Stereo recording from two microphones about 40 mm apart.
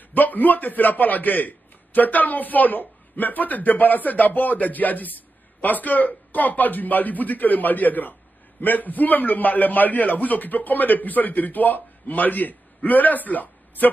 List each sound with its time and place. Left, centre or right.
0.1 s a man's voice: left